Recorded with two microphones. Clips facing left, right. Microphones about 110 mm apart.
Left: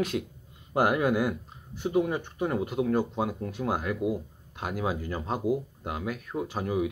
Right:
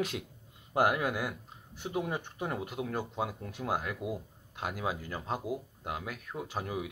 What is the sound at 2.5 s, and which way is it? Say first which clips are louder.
Speech: left 11 dB; centre (ahead or behind).